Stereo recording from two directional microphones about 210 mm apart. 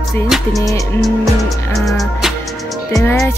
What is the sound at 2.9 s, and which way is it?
Speech, 15° left (ahead or behind).